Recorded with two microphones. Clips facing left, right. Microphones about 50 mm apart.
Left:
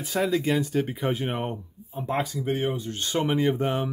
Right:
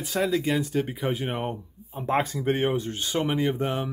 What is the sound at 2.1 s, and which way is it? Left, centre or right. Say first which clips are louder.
Speech: right 3 dB; right.